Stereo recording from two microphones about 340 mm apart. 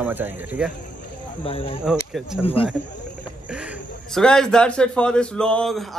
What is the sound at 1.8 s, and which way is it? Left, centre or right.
Speech, centre.